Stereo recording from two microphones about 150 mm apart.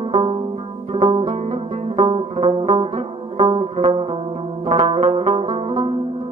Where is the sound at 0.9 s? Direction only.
35° right (ahead or behind).